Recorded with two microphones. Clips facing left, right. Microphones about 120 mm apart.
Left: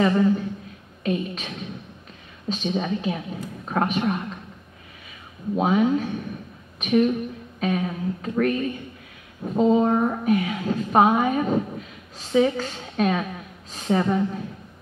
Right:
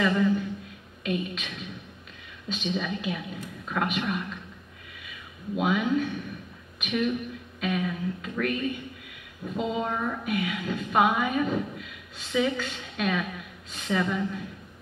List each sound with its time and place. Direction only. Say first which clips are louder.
0.0 s a woman's voice: left 4 dB; 35° left (ahead or behind)
5.6 s a woman's voice: left 5 dB; 35° left (ahead or behind)